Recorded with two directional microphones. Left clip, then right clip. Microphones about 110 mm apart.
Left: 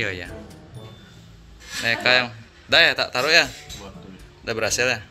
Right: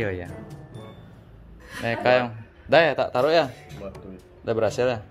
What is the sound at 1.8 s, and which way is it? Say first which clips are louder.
Speech: left 2 dB; 40° right (ahead or behind).